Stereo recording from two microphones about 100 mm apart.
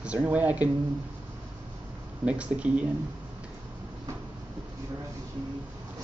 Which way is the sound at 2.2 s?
10° right (ahead or behind).